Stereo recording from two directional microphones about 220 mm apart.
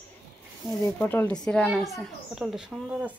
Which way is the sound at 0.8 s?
10° left (ahead or behind).